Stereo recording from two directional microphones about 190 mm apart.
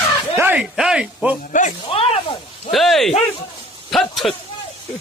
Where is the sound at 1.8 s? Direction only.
30° left (ahead or behind).